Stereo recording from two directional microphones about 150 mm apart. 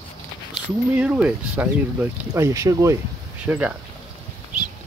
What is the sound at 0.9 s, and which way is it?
Speech, 10° right (ahead or behind).